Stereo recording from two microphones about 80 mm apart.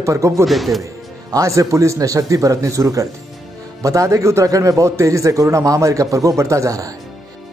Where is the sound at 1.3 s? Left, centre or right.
Right.